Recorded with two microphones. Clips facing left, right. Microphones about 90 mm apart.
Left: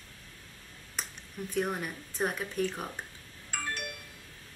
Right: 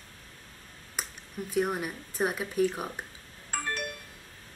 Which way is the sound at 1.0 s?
5° right (ahead or behind).